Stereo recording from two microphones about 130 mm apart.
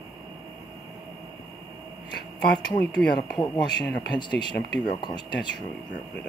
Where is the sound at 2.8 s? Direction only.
5° left (ahead or behind).